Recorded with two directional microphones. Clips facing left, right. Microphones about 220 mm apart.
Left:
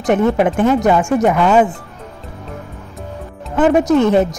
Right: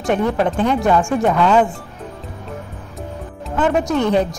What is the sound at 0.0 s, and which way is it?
Speech, 20° left (ahead or behind).